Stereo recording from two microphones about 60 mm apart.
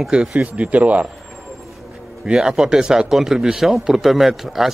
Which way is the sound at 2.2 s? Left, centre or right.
Centre.